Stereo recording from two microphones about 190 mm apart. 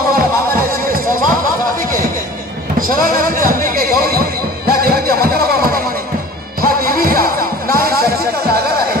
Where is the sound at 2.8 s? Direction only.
50° right (ahead or behind).